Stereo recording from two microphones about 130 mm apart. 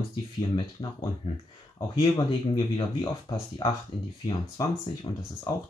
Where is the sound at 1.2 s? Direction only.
50° left (ahead or behind).